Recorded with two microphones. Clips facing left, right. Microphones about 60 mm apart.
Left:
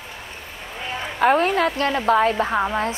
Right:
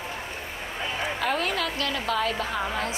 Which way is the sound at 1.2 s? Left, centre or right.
Left.